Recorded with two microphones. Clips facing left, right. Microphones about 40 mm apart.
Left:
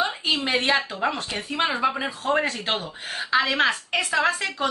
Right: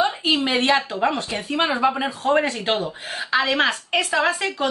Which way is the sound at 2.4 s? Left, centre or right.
Centre.